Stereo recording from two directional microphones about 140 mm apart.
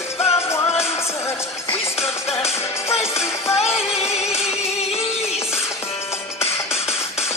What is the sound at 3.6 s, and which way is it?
Music, 50° left (ahead or behind).